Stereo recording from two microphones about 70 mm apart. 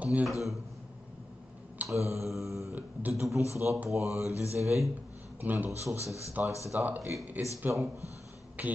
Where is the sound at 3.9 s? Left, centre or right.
Left.